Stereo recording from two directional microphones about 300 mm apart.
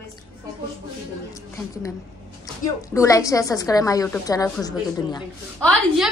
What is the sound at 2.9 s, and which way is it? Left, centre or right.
A woman's voice, centre.